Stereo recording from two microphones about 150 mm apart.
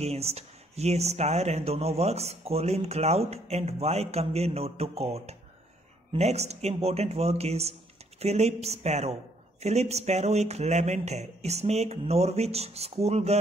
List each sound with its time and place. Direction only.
0.0 s speech: 45° right (ahead or behind)